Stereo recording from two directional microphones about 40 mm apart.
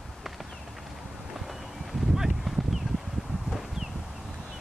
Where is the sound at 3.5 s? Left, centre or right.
Centre.